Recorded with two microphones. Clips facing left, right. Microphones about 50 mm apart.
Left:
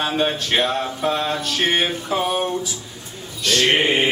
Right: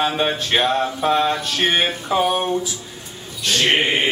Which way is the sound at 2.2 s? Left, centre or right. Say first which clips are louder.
Right 1 dB; right.